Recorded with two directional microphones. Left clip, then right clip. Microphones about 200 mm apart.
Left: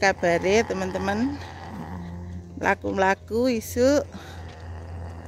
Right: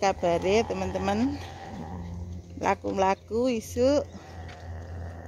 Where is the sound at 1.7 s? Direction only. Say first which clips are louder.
Left 2 dB; 40° left (ahead or behind).